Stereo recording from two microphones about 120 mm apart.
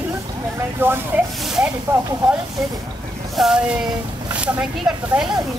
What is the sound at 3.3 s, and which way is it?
Speech, 5° right (ahead or behind).